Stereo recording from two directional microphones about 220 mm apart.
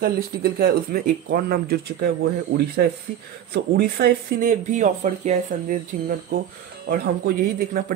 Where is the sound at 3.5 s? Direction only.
45° right (ahead or behind).